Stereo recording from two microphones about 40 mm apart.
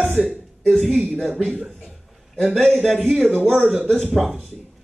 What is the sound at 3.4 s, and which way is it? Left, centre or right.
Speech, centre.